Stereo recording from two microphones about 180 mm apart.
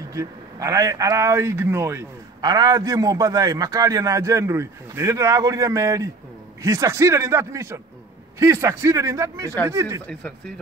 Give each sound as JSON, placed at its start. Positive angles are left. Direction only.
{"t": 0.1, "sound": "a man's voice", "side_deg": -20}